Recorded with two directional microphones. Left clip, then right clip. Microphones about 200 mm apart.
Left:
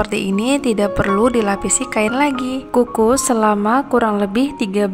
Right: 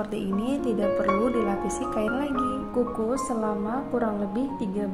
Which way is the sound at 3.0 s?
20° left (ahead or behind).